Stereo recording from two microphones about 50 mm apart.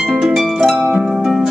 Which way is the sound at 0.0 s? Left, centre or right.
Centre.